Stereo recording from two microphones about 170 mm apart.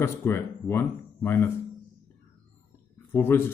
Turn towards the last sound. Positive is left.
turn(degrees=15)  # may be behind; listen again after turning